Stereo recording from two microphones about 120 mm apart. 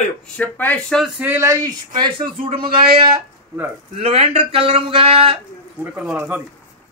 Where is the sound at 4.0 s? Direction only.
55° right (ahead or behind).